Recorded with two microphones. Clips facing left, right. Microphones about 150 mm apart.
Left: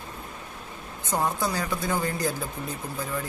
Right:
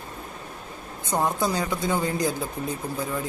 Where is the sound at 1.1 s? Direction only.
20° right (ahead or behind).